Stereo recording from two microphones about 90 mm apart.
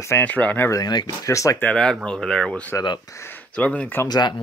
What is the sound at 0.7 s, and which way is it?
Speech, 45° left (ahead or behind).